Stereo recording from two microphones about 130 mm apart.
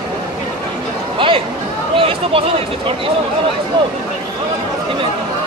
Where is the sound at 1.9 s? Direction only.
45° right (ahead or behind).